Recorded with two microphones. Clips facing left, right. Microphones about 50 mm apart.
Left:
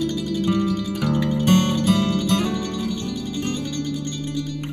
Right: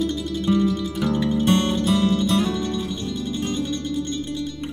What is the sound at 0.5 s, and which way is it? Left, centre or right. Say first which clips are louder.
Music: right 3 dB; left.